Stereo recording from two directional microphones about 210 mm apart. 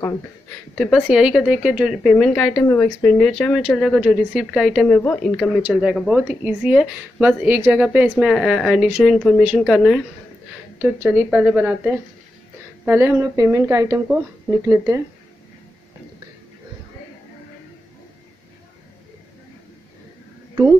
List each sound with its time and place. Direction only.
0.7 s a woman's voice: centre (ahead or behind)
5.6 s a woman's voice: 5° right (ahead or behind)